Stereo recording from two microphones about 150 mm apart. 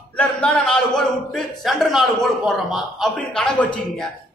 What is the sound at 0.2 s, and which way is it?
A man's voice, 5° left (ahead or behind).